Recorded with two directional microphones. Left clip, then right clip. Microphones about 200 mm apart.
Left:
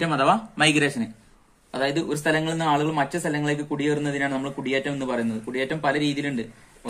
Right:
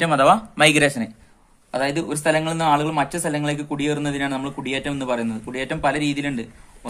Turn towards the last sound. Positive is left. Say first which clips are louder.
# right 1 dB
turn(degrees=-35)  # may be behind; listen again after turning